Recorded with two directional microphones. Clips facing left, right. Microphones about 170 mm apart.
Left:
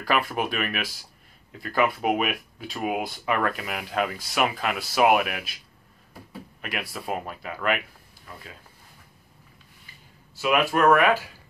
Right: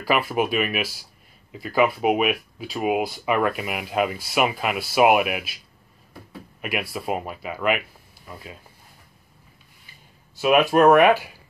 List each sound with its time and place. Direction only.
0.0 s speech: 5° right (ahead or behind)
6.6 s speech: 10° right (ahead or behind)
10.4 s speech: 20° right (ahead or behind)